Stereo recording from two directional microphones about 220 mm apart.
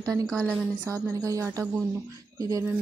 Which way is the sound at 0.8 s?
15° right (ahead or behind).